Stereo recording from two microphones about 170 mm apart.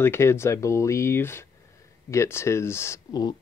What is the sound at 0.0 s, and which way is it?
Speech, 15° left (ahead or behind).